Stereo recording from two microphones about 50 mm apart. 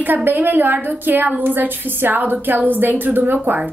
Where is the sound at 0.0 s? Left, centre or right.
Right.